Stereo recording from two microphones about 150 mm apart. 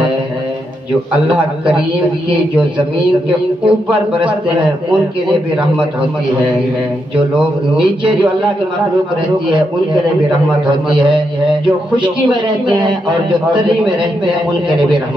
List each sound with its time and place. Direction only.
1.1 s a man's voice: 10° right (ahead or behind)
3.6 s a man's voice: 10° right (ahead or behind)
7.2 s a man's voice: 5° right (ahead or behind)
12.8 s a man's voice: 30° right (ahead or behind)